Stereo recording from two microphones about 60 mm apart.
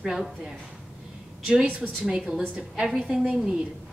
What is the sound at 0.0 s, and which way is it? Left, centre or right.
A woman's voice, centre.